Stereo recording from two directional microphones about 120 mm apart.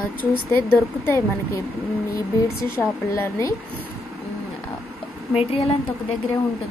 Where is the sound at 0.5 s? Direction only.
20° left (ahead or behind).